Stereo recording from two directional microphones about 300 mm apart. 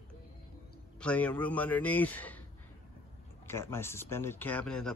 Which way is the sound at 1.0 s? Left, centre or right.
Centre.